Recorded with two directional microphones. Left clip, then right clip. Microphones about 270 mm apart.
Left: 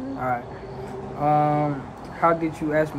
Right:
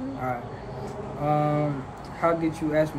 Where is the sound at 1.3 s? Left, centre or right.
Centre.